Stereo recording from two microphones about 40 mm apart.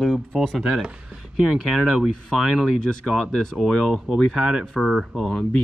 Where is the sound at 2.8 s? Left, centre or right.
Left.